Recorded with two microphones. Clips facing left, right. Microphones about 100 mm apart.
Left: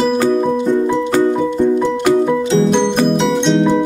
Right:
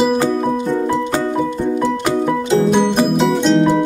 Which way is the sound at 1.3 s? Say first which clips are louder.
Left 4 dB; centre (ahead or behind).